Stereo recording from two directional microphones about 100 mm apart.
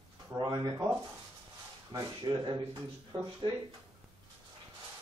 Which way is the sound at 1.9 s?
45° right (ahead or behind).